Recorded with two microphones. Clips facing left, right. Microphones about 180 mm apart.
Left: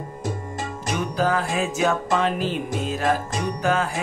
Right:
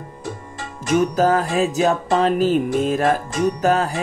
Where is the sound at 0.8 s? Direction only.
45° right (ahead or behind).